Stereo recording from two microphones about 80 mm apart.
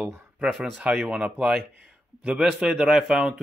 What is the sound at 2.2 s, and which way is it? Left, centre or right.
A man's voice, centre.